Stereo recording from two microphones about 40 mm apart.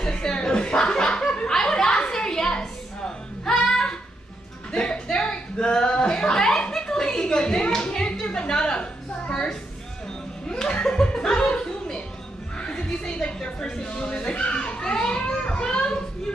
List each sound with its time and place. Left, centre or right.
0.0 s chuckle: centre
4.7 s music: left
5.1 s a sound: left
7.8 s clapping: left
8.3 s a sound: left
9.3 s music: centre
10.5 s chuckle: centre
12.5 s neigh: left
14.8 s children playing: left